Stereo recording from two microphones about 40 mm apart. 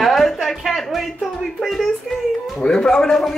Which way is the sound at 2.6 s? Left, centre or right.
Left.